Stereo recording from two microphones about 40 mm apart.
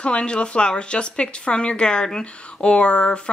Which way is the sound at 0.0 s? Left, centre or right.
Left.